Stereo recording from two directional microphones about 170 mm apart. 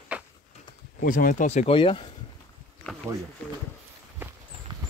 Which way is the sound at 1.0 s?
55° left (ahead or behind).